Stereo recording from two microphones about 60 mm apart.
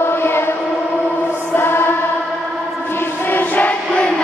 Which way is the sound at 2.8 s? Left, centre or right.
Left.